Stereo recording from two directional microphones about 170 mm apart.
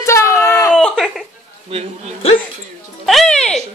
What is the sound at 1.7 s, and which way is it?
Speech, 35° right (ahead or behind).